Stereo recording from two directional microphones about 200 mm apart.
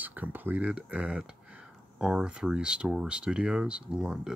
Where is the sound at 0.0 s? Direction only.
10° right (ahead or behind).